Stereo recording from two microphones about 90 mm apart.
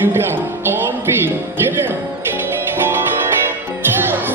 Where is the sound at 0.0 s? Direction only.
25° right (ahead or behind).